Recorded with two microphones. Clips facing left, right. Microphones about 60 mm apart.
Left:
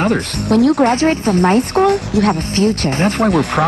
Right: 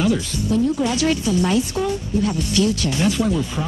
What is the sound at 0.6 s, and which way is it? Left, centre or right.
Speech, left.